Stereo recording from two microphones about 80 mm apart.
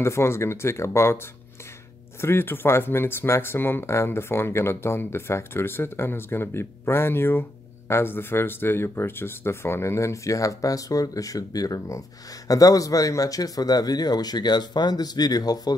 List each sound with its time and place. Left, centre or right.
0.0 s speech: left
2.2 s speech: left